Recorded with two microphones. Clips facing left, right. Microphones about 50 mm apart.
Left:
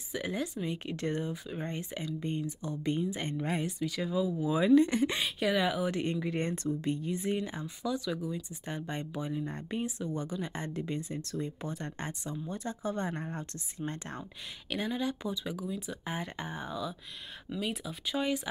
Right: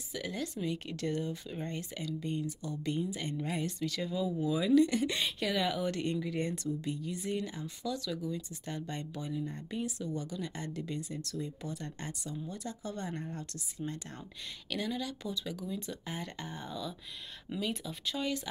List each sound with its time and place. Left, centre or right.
0.1 s speech: left
3.6 s speech: centre
4.5 s speech: left
5.4 s speech: centre
6.1 s speech: left
7.1 s speech: left
9.4 s speech: left
14.7 s speech: left